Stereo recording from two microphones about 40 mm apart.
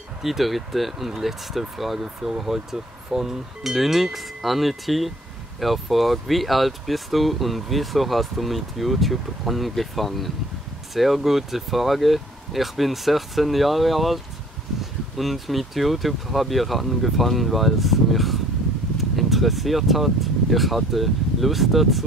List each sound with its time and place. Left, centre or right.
0.2 s speech: centre
18.9 s a sound: centre
20.5 s speech: centre